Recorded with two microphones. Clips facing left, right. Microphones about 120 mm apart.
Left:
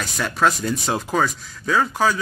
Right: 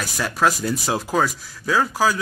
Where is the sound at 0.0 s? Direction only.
5° right (ahead or behind).